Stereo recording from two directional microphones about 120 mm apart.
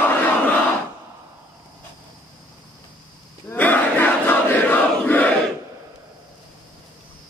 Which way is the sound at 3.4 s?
15° left (ahead or behind).